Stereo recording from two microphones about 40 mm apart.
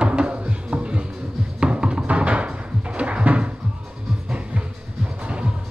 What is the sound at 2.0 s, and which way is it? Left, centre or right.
Cupboard open or close, right.